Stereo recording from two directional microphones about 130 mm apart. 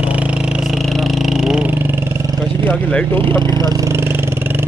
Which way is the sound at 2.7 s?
10° left (ahead or behind).